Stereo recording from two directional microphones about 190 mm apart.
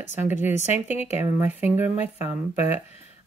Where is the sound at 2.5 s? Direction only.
35° left (ahead or behind).